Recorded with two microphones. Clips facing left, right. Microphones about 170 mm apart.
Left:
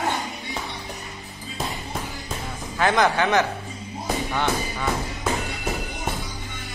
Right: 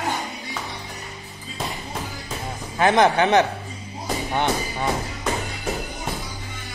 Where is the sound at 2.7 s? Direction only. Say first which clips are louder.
Right 3 dB; 20° right (ahead or behind).